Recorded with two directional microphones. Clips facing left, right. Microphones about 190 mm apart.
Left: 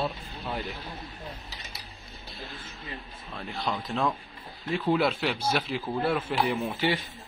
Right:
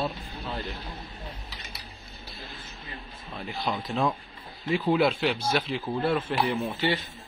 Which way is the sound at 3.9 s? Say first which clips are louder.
Right 2 dB; centre (ahead or behind).